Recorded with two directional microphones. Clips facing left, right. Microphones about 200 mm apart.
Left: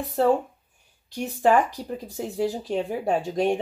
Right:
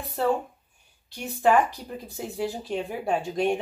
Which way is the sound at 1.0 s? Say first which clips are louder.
Left 1 dB; 40° left (ahead or behind).